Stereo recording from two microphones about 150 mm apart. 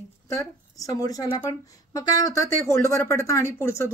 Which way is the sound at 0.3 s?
20° left (ahead or behind).